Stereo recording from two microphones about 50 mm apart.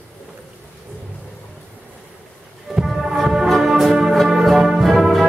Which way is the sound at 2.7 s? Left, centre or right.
Centre.